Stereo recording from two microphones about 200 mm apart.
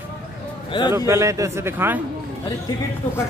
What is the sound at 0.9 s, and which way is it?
A man's voice, 15° right (ahead or behind).